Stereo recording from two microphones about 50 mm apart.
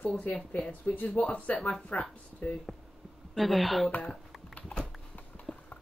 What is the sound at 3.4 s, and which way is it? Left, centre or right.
Speech, centre.